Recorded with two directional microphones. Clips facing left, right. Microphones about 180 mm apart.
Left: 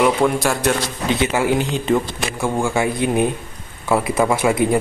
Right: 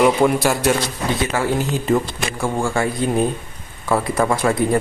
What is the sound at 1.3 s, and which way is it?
Speech, 15° left (ahead or behind).